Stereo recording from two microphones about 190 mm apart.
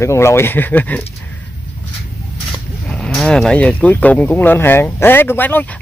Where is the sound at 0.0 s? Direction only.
15° left (ahead or behind).